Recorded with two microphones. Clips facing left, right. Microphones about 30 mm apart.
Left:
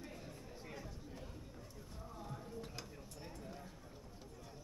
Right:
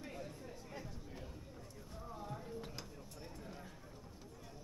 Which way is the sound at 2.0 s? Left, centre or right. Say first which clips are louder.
Right 3 dB; centre.